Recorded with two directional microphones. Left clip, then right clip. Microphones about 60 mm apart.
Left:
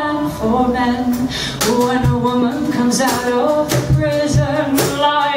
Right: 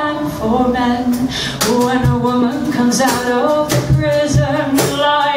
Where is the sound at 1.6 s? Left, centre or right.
Centre.